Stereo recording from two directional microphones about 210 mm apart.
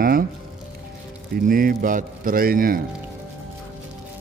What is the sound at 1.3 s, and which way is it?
A man's voice, 40° right (ahead or behind).